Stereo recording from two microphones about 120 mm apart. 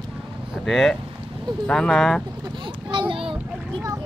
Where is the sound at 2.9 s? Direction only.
40° right (ahead or behind).